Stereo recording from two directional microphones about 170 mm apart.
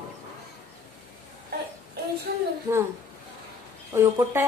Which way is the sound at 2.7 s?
20° right (ahead or behind).